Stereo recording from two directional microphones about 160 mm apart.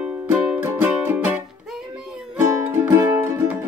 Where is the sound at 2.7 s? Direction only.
15° right (ahead or behind).